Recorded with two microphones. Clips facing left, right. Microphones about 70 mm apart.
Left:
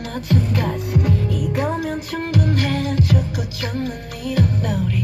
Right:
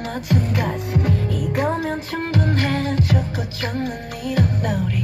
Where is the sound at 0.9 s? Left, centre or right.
Right.